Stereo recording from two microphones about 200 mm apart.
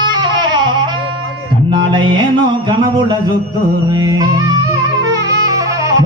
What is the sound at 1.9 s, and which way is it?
Music, 25° right (ahead or behind).